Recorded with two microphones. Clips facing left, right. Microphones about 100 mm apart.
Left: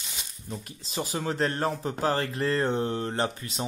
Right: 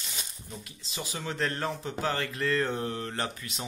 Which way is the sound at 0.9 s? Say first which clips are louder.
Left 6 dB; 40° left (ahead or behind).